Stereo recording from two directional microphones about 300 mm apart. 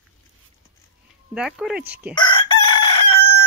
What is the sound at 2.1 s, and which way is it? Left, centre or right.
Chicken, centre.